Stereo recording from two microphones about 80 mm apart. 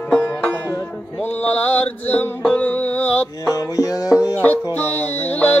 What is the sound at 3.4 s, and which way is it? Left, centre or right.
Music, left.